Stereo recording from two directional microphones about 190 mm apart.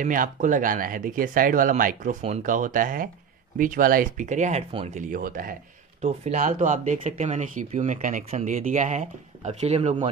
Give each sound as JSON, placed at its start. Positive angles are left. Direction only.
{"t": 0.0, "sound": "speech", "side_deg": -45}